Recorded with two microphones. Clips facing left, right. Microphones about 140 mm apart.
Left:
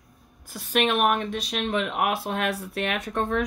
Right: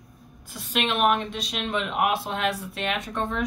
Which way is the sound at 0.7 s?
50° left (ahead or behind).